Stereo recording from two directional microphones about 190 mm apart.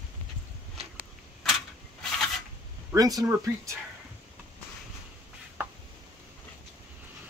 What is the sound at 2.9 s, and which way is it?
Speech, 20° right (ahead or behind).